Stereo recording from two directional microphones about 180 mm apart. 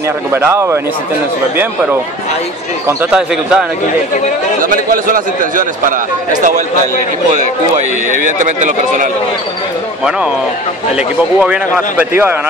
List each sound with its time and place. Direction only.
0.3 s speech: 15° right (ahead or behind)
4.6 s speech: 50° right (ahead or behind)
8.4 s speech: 45° right (ahead or behind)
11.0 s speech: 5° right (ahead or behind)